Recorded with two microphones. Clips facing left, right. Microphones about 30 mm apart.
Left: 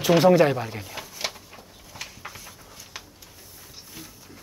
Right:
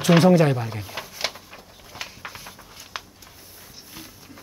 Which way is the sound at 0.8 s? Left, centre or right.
Centre.